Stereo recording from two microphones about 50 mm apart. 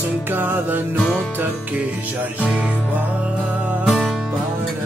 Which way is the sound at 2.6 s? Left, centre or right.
Right.